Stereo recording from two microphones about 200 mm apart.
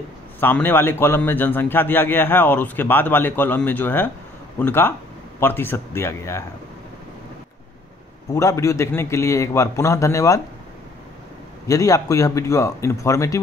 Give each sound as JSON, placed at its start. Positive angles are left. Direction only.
{"t": 0.4, "sound": "a man's voice", "side_deg": 10}
{"t": 8.3, "sound": "a man's voice", "side_deg": 15}
{"t": 11.6, "sound": "a man's voice", "side_deg": 15}